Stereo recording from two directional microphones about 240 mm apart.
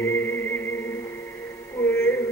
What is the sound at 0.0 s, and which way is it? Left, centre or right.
Music, centre.